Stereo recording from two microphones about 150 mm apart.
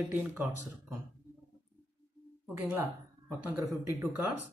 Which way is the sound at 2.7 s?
15° right (ahead or behind).